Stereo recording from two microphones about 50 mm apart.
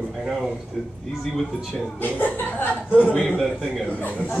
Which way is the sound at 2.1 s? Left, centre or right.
Left.